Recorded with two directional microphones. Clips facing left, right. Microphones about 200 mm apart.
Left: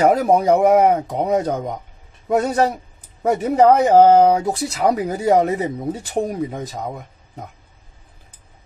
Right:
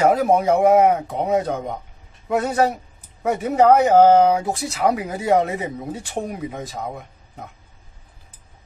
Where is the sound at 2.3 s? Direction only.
40° left (ahead or behind).